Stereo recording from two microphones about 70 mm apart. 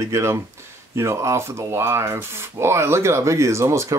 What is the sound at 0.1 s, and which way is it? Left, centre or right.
Speech, right.